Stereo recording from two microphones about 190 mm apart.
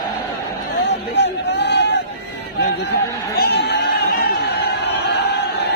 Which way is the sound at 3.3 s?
55° left (ahead or behind).